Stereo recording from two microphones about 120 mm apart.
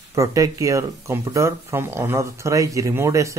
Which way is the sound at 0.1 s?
25° right (ahead or behind).